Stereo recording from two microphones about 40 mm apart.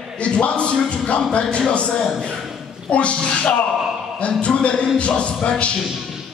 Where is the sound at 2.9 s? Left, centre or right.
Left.